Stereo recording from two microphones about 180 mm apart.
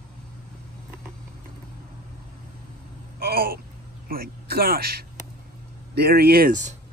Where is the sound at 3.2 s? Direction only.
55° right (ahead or behind).